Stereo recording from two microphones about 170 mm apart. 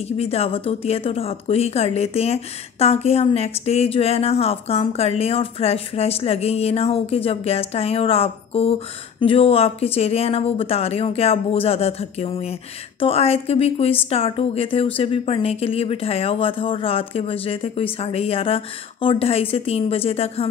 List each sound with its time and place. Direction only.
0.2 s speech: 35° left (ahead or behind)